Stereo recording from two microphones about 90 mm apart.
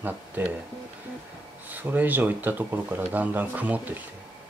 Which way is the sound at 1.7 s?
20° right (ahead or behind).